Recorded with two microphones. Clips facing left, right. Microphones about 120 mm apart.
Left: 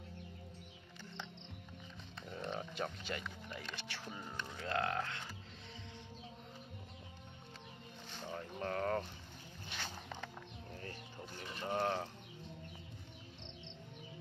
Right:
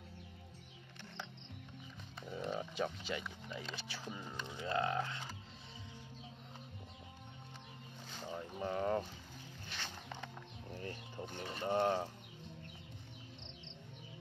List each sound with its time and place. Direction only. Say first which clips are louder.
2.3 s speech: right 2 dB; 10° right (ahead or behind)
8.2 s speech: right 1 dB; 10° right (ahead or behind)
9.7 s a sound: left 2 dB; 5° left (ahead or behind)
11.3 s speech: right 3 dB; 30° right (ahead or behind)